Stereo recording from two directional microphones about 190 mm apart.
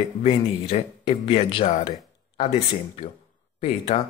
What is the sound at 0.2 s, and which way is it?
Speech, 30° left (ahead or behind).